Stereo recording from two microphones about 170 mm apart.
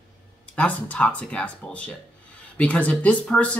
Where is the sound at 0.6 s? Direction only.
10° left (ahead or behind).